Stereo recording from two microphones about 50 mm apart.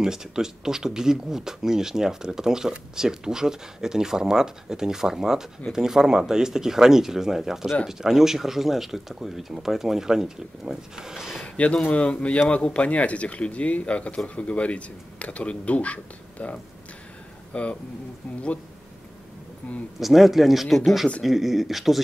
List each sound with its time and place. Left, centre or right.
0.0 s speech: centre
11.4 s speech: left
20.0 s speech: centre